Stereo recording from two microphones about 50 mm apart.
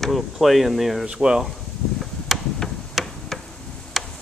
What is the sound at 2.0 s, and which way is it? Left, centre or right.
Insect, centre.